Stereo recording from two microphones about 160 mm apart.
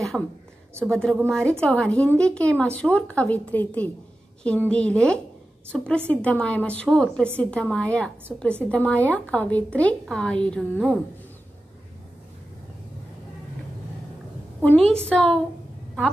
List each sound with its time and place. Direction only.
0.1 s a woman's voice: 5° right (ahead or behind)
14.6 s a woman's voice: 5° left (ahead or behind)